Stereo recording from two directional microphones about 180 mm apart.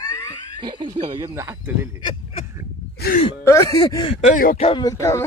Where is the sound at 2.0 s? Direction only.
30° left (ahead or behind).